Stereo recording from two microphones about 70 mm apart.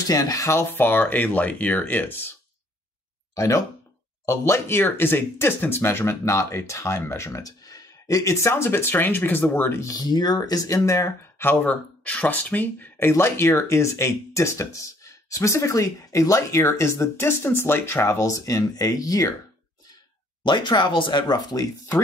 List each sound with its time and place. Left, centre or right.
0.0 s speech: left
0.7 s speech: left
3.3 s speech: left
4.3 s speech: left
7.4 s speech: left
9.8 s speech: left
11.4 s speech: left
13.1 s speech: left
20.4 s speech: left